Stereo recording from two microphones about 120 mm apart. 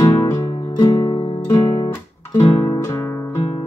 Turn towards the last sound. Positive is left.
turn(degrees=25)  # may be behind; listen again after turning